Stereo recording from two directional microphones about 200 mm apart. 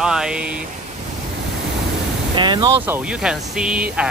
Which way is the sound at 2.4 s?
20° right (ahead or behind).